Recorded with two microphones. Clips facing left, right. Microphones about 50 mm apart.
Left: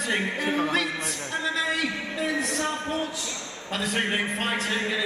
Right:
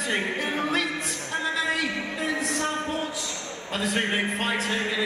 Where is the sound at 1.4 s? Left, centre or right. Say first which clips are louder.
Even; centre.